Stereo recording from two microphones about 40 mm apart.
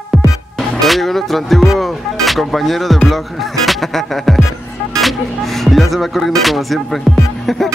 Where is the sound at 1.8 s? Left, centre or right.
Centre.